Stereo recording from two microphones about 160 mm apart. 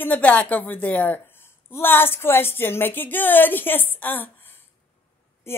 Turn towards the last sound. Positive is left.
turn(degrees=10)  # may be behind; listen again after turning